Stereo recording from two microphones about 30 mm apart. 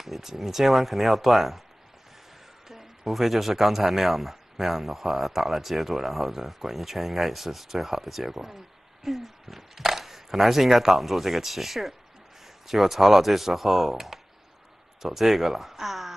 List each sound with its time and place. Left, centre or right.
0.0 s speech: centre
2.7 s speech: centre